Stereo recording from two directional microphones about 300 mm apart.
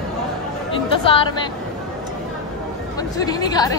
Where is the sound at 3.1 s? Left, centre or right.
Centre.